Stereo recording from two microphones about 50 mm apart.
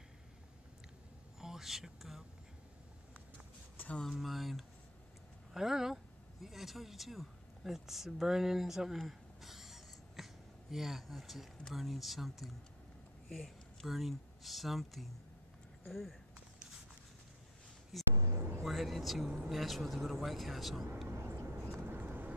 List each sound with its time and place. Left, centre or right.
1.4 s speech: centre
4.2 s speech: centre
8.9 s a sound: centre
11.7 s speech: centre
18.1 s speech: right
18.6 s speech: centre
21.1 s vehicle: right
21.8 s vehicle: right